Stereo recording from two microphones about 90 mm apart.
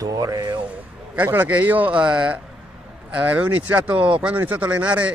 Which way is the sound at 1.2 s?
20° right (ahead or behind).